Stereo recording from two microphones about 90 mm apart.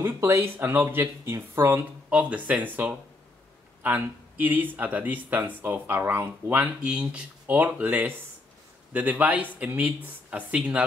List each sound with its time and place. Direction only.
0.0 s speech: 30° right (ahead or behind)
2.0 s speech: 15° right (ahead or behind)